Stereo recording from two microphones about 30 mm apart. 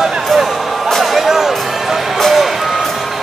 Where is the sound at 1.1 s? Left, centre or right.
Centre.